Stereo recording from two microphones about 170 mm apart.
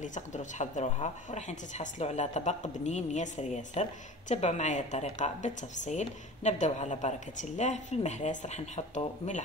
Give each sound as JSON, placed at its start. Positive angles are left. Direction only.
{"t": 0.0, "sound": "speech", "side_deg": 45}